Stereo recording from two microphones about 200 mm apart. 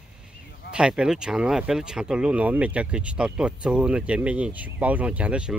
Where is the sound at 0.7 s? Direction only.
5° right (ahead or behind).